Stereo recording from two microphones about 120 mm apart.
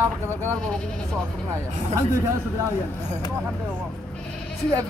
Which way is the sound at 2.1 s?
25° right (ahead or behind).